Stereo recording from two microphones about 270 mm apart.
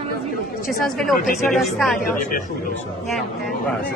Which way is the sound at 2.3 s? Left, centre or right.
Left.